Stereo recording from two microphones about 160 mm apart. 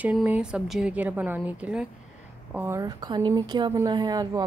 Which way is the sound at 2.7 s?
25° right (ahead or behind).